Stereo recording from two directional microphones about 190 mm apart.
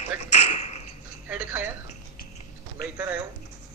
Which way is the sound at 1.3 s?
5° right (ahead or behind).